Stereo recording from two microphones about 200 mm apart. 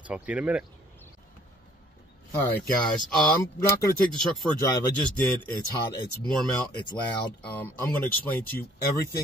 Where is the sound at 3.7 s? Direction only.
15° left (ahead or behind).